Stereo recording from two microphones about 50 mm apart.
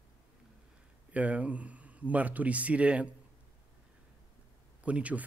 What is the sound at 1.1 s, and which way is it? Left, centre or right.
A man's voice, right.